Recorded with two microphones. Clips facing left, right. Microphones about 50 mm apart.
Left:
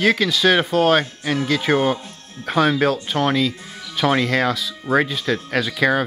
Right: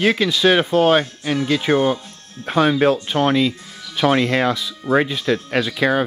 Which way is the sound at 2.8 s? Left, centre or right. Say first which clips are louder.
Right 3 dB; centre.